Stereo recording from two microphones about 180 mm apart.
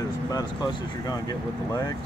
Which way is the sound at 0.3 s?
20° left (ahead or behind).